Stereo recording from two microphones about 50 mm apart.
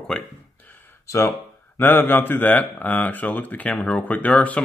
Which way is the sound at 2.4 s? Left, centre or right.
Left.